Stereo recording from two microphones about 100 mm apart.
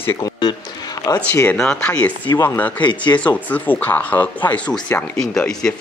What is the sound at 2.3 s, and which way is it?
Speech, 25° left (ahead or behind).